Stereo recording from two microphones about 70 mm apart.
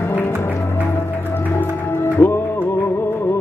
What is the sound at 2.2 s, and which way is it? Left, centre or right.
Music, left.